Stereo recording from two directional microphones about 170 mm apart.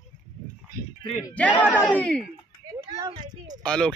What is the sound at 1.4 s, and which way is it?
Speech, 10° left (ahead or behind).